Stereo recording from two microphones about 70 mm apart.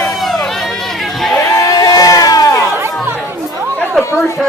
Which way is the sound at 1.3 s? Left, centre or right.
Left.